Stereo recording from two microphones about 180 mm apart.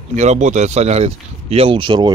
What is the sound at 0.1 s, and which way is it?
Speech, 40° right (ahead or behind).